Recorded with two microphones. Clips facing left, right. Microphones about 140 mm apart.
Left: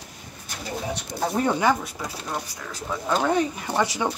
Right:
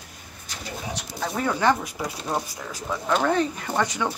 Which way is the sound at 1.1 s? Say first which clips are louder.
Left 3 dB; 25° left (ahead or behind).